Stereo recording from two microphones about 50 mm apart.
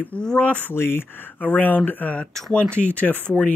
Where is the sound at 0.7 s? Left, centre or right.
Left.